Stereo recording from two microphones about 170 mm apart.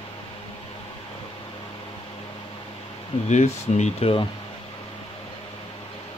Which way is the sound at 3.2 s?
40° left (ahead or behind).